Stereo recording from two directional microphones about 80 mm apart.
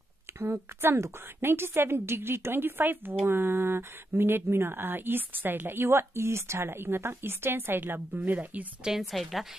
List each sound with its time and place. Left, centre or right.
0.4 s speech: right
8.8 s a woman's voice: centre